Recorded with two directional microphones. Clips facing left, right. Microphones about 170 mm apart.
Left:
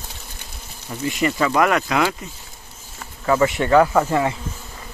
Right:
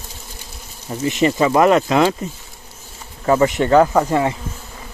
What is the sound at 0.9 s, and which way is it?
Speech, 25° right (ahead or behind).